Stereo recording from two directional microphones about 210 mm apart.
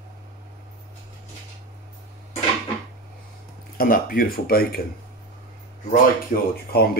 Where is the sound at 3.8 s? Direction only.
45° left (ahead or behind).